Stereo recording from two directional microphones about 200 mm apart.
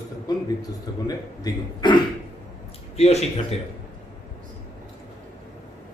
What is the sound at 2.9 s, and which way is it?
Speech, 30° left (ahead or behind).